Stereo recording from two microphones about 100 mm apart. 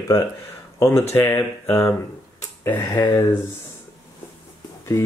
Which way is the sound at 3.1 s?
25° left (ahead or behind).